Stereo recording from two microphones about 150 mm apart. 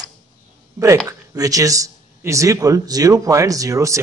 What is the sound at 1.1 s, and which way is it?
A man's voice, 20° right (ahead or behind).